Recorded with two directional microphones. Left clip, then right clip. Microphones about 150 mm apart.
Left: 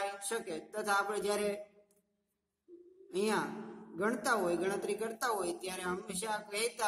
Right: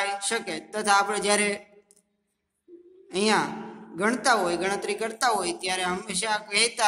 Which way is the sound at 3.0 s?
20° right (ahead or behind).